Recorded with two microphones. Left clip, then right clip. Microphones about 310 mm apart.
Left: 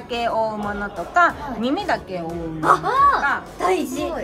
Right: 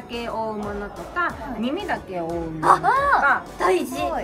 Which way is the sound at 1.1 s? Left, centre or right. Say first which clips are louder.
Left 8 dB; centre.